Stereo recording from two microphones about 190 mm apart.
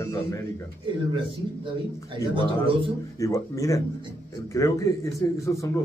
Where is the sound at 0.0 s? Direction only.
15° left (ahead or behind).